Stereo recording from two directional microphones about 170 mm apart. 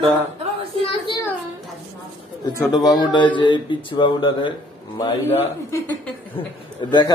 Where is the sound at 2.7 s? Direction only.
25° left (ahead or behind).